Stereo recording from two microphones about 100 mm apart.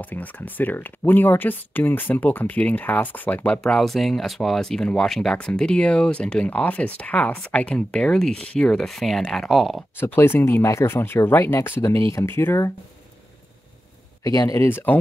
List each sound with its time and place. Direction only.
0.0 s speech: 15° left (ahead or behind); by 9.8 s centre (ahead or behind)
9.9 s speech: 20° left (ahead or behind)
14.2 s speech: 35° left (ahead or behind)